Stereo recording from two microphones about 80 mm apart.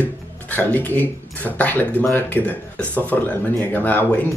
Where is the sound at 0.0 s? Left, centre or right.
Left.